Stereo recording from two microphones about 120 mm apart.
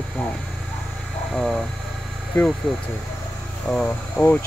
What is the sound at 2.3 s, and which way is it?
Speech, 15° left (ahead or behind).